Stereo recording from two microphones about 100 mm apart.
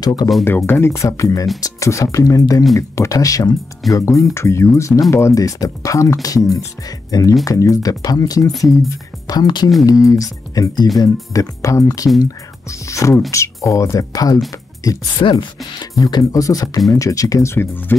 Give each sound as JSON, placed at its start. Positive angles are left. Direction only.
{"t": 0.0, "sound": "speech", "side_deg": 40}
{"t": 0.7, "sound": "speech", "side_deg": 25}
{"t": 3.8, "sound": "speech", "side_deg": 0}
{"t": 4.2, "sound": "speech", "side_deg": 30}
{"t": 8.5, "sound": "speech", "side_deg": 0}
{"t": 9.3, "sound": "speech", "side_deg": 45}
{"t": 15.1, "sound": "speech", "side_deg": 55}
{"t": 16.0, "sound": "speech", "side_deg": 40}